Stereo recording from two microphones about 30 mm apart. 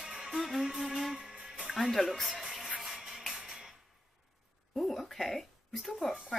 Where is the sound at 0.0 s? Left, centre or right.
Centre.